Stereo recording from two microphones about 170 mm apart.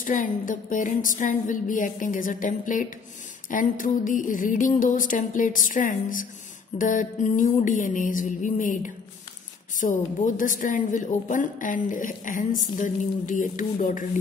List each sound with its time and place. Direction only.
0.0 s a woman's voice: 50° left (ahead or behind)